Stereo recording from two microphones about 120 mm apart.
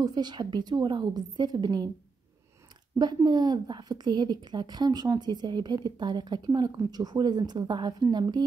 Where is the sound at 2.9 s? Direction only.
35° right (ahead or behind).